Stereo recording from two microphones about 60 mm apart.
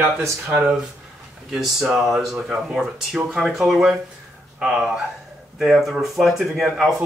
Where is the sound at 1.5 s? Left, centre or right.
Centre.